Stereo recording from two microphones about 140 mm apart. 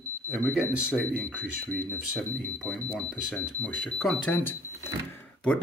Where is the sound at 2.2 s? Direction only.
90° right.